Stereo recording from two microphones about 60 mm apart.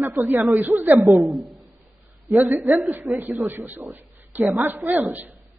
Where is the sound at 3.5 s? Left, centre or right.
Right.